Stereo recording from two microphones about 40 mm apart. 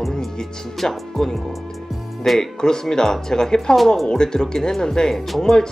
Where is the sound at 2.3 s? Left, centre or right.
Centre.